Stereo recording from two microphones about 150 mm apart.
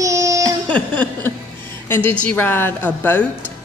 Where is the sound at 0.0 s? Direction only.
20° right (ahead or behind).